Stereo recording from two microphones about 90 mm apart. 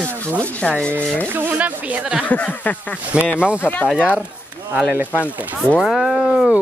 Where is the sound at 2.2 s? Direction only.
15° left (ahead or behind).